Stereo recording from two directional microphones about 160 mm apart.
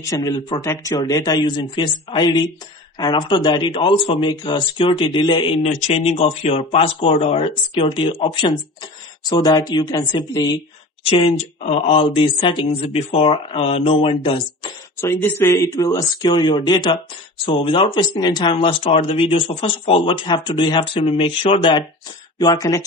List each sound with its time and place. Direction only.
0.1 s speech: 25° left (ahead or behind)
5.7 s speech: 45° left (ahead or behind); by 10.5 s 25° left (ahead or behind)
11.1 s speech: 35° left (ahead or behind)
15.0 s speech: 15° left (ahead or behind); by 21.8 s 30° left (ahead or behind)
22.4 s speech: 20° left (ahead or behind)